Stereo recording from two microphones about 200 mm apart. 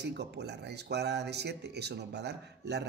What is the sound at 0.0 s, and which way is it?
Speech, 55° right (ahead or behind).